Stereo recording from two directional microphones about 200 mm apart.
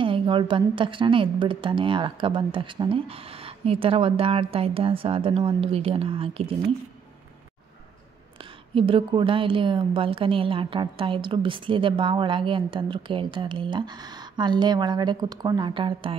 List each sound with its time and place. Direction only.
0.0 s a woman's voice: 25° right (ahead or behind)
8.4 s a woman's voice: 25° right (ahead or behind)